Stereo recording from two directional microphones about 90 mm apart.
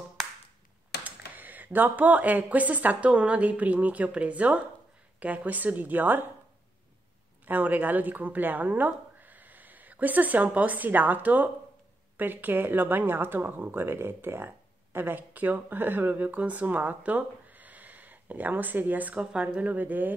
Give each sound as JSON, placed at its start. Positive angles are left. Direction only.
{"t": 1.0, "sound": "speech", "side_deg": -20}
{"t": 7.4, "sound": "speech", "side_deg": -20}